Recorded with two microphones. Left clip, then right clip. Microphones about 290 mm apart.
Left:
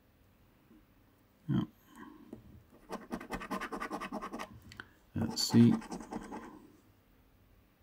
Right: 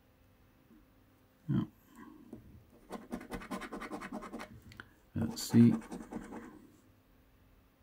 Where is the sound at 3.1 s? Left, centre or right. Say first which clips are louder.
Left 3 dB; left.